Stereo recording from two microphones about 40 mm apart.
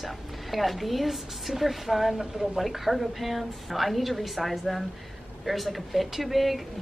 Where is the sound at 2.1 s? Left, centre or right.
Centre.